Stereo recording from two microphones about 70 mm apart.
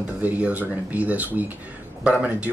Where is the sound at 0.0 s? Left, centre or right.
Right.